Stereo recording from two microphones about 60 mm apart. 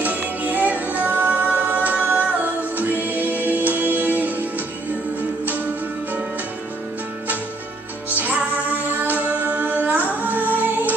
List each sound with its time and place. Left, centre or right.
0.0 s music: right
3.3 s music: left
3.7 s music: right
8.2 s music: right